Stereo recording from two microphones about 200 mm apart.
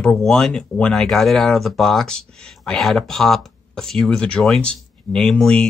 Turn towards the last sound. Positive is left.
turn(degrees=5)  # may be behind; listen again after turning